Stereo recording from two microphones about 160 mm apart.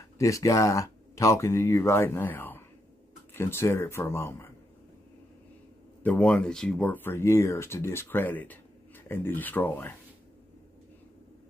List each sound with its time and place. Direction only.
0.0 s speech: 20° left (ahead or behind)
6.0 s speech: 10° left (ahead or behind)